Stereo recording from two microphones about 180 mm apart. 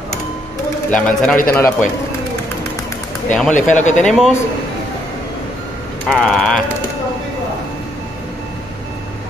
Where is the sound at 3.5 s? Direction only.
45° left (ahead or behind).